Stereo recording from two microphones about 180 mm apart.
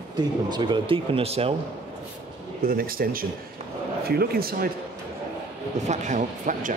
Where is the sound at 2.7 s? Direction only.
55° right (ahead or behind).